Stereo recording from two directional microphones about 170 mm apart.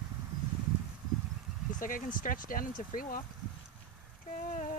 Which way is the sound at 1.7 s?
50° left (ahead or behind).